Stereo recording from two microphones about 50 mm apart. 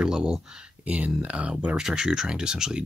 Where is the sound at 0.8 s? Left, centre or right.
Right.